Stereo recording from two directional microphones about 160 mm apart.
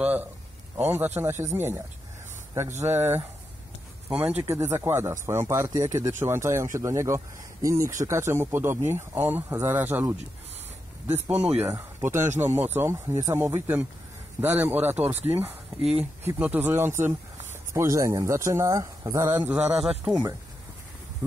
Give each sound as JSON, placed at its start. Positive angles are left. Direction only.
{"t": 0.0, "sound": "speech", "side_deg": -10}
{"t": 2.8, "sound": "speech", "side_deg": -15}
{"t": 11.6, "sound": "speech", "side_deg": -15}
{"t": 20.1, "sound": "speech", "side_deg": -25}